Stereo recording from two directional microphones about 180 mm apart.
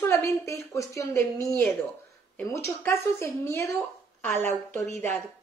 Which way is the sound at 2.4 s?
15° left (ahead or behind).